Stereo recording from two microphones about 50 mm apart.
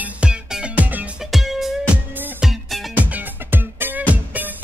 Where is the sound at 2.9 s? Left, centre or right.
Right.